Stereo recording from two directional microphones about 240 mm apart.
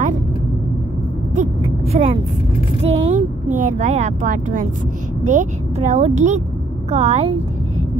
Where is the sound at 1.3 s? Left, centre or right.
Right.